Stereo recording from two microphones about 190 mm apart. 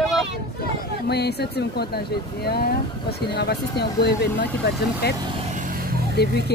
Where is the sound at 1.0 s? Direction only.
60° left (ahead or behind).